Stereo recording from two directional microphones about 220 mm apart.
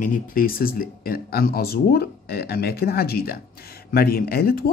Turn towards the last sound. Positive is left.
turn(degrees=45)  # may be behind; listen again after turning